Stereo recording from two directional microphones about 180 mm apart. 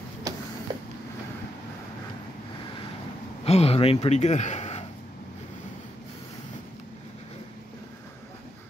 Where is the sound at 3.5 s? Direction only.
35° left (ahead or behind).